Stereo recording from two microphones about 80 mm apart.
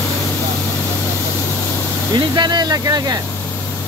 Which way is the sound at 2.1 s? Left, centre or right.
Right.